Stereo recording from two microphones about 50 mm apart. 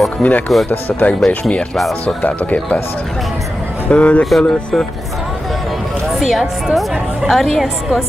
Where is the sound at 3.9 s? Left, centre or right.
Left.